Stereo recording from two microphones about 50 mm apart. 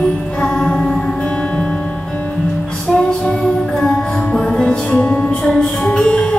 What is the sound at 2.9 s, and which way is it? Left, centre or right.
Music, centre.